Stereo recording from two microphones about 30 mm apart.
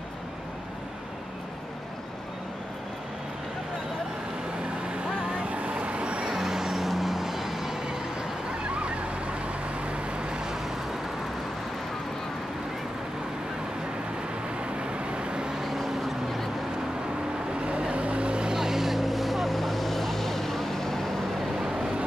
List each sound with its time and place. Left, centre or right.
5.0 s vehicle: right
6.3 s vehicle: centre
8.7 s vehicle: right
14.6 s vehicle: right
15.6 s vehicle: centre
17.6 s vehicle: right
18.5 s vehicle: centre
21.5 s a sound: right